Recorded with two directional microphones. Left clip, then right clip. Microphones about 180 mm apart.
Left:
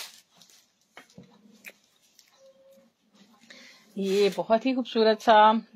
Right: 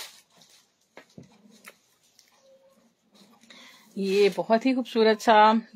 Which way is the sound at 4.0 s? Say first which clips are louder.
Right 2 dB; 15° right (ahead or behind).